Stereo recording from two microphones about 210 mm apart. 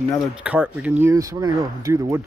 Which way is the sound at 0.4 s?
5° right (ahead or behind).